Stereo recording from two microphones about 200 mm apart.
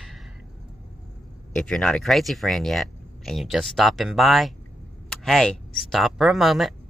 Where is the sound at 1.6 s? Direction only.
5° left (ahead or behind).